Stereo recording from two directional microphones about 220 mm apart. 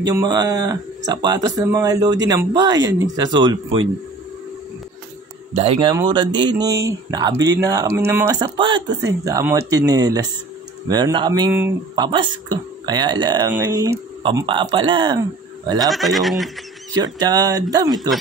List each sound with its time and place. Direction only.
0.0 s speech: 15° right (ahead or behind)
5.5 s speech: 25° right (ahead or behind)
11.5 s speech: 10° right (ahead or behind)
12.0 s speech: 20° right (ahead or behind)
15.9 s speech: centre (ahead or behind)
16.9 s speech: 20° right (ahead or behind)